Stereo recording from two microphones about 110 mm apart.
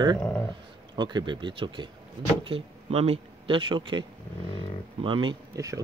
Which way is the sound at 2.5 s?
60° right (ahead or behind).